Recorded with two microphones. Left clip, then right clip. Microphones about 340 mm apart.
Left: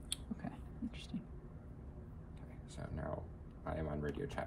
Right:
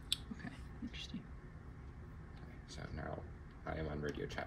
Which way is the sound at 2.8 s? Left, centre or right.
Left.